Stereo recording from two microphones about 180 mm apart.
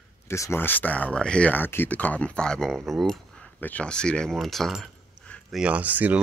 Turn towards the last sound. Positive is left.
turn(degrees=-10)  # may be behind; listen again after turning